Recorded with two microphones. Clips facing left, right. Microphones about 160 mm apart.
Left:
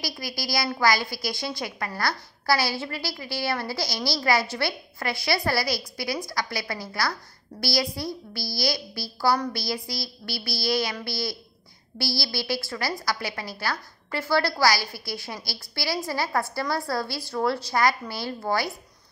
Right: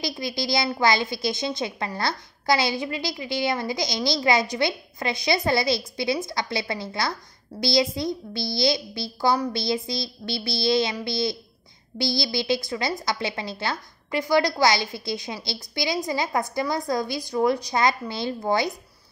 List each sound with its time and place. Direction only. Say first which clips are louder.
0.0 s a woman's voice: right 5 dB; 25° right (ahead or behind)